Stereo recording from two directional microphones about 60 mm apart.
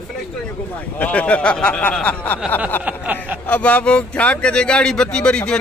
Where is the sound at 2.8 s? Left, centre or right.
Right.